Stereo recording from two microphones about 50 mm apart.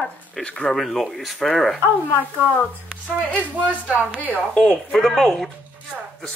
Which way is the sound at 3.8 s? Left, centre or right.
Right.